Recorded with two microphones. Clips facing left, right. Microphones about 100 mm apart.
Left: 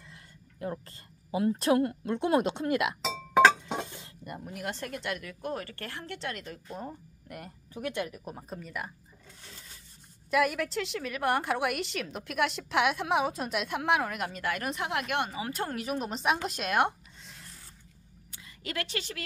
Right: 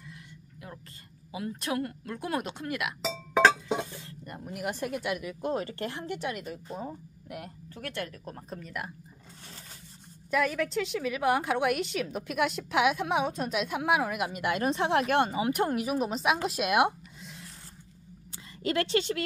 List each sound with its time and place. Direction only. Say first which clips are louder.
0.0 s a sound: right 4 dB; 30° left (ahead or behind)
1.3 s speech: left 7 dB; 30° left (ahead or behind)
3.8 s dishes: right 2 dB; 25° left (ahead or behind)
4.3 s a woman's voice: right 2 dB; centre (ahead or behind)
7.7 s speech: left 3 dB; 15° left (ahead or behind)
10.3 s a woman's voice: even; 5° left (ahead or behind); by 15.3 s 35° right (ahead or behind)
15.3 s a woman's voice: right 6 dB; 20° right (ahead or behind); by 16.3 s 5° right (ahead or behind)
16.4 s a sound: right 2 dB; 10° right (ahead or behind)
18.3 s speech: right 8 dB; 30° right (ahead or behind)